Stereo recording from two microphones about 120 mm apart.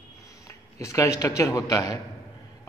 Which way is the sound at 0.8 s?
25° left (ahead or behind).